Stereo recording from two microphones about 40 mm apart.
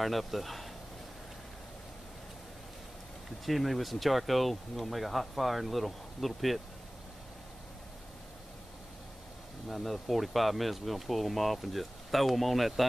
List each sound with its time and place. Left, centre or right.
0.0 s speech: centre
3.4 s speech: centre
9.7 s speech: centre